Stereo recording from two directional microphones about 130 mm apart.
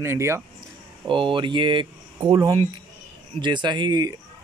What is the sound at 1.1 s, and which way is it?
Speech, 40° right (ahead or behind).